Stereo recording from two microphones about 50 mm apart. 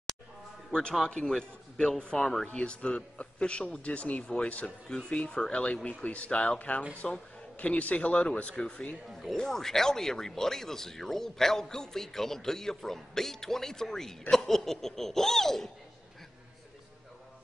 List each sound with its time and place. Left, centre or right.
1.3 s speech: centre; by 4.7 s left
4.8 s speech: centre
9.2 s speech: centre